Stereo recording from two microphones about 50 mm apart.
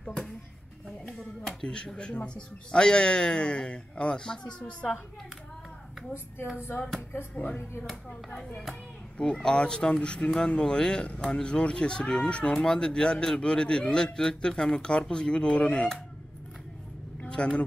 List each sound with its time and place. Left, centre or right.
0.0 s a sound: centre
1.5 s a man's voice: centre
6.5 s speech: left
9.2 s a man's voice: centre
17.4 s speech: left